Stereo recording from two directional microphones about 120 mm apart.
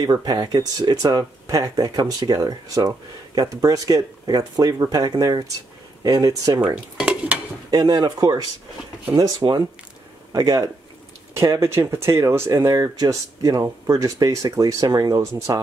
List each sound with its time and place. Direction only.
0.0 s speech: 35° right (ahead or behind)
6.6 s stir: 10° right (ahead or behind)
7.7 s speech: 35° right (ahead or behind)